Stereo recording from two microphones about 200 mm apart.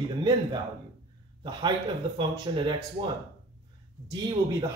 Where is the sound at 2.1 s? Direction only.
20° right (ahead or behind).